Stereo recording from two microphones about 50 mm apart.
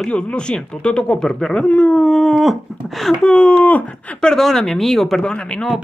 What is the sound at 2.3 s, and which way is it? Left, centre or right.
Dog, centre.